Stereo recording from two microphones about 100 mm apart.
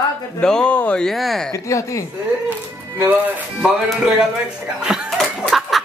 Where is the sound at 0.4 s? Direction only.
10° left (ahead or behind).